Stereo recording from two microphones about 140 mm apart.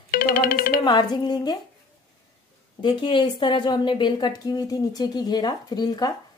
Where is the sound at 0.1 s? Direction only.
90° left.